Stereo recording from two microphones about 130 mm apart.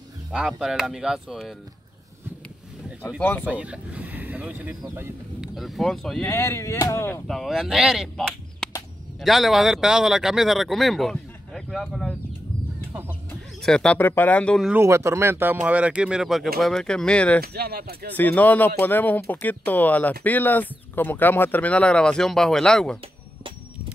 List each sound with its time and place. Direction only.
0.3 s speech: 5° right (ahead or behind)
3.2 s speech: 15° left (ahead or behind)
3.4 s speech: 10° right (ahead or behind)
5.4 s speech: centre (ahead or behind)
6.2 s speech: 20° left (ahead or behind)
7.2 s speech: centre (ahead or behind)
13.6 s speech: 5° left (ahead or behind)
13.9 s speech: 15° left (ahead or behind)
14.8 s speech: 20° right (ahead or behind); by 22.9 s 5° left (ahead or behind)